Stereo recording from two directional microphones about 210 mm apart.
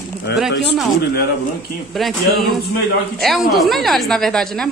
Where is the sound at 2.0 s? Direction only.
Centre (ahead or behind).